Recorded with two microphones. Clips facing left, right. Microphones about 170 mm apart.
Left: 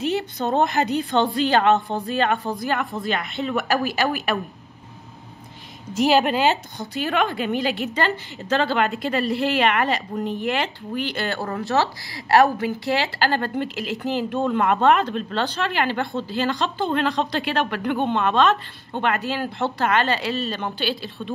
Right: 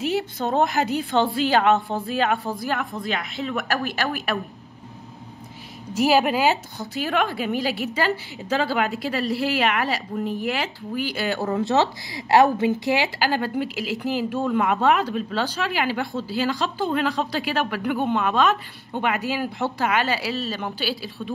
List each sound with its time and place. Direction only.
0.0 s a woman's voice: 5° right (ahead or behind)
5.9 s a woman's voice: 5° right (ahead or behind)